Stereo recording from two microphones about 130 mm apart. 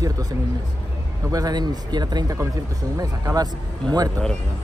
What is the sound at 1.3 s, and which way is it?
Speech, 30° right (ahead or behind).